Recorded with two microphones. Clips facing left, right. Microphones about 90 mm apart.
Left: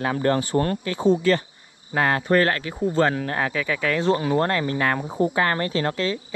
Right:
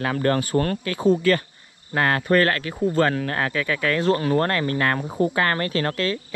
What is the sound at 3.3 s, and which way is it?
Speech, 55° right (ahead or behind).